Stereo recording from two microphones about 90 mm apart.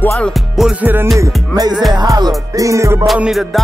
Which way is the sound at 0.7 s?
20° right (ahead or behind).